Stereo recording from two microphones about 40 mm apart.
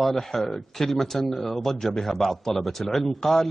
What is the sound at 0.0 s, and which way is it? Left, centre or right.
A man's voice, centre.